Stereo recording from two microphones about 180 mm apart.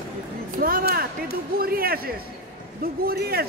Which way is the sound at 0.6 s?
55° right (ahead or behind).